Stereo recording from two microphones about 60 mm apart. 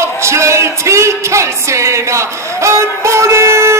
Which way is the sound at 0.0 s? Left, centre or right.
Right.